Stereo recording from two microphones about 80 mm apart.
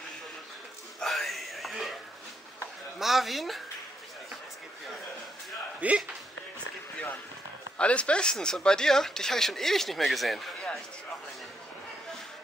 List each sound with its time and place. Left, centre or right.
1.0 s a sound: centre
3.0 s a woman's voice: centre
5.8 s speech: centre
7.7 s speech: centre